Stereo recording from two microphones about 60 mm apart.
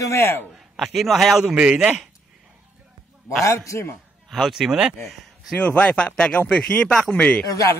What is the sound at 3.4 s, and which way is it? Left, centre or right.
Speech, left.